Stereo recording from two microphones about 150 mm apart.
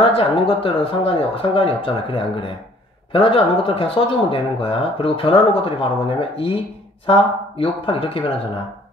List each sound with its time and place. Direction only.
0.0 s speech: 35° left (ahead or behind)